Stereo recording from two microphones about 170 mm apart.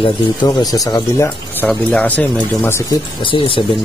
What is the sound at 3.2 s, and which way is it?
Speech, 30° left (ahead or behind).